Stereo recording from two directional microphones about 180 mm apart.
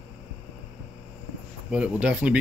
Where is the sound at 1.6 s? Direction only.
5° right (ahead or behind).